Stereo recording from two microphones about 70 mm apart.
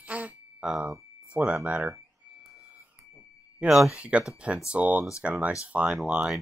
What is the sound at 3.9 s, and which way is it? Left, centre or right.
Speech, centre.